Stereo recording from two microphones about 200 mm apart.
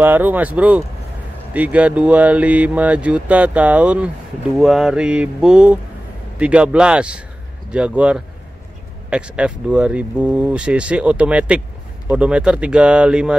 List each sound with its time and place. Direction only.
0.0 s speech: 10° right (ahead or behind)